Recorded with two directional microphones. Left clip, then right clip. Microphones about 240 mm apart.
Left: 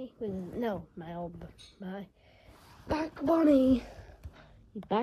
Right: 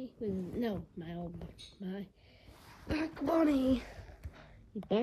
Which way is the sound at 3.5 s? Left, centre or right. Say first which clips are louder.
Left 7 dB; centre.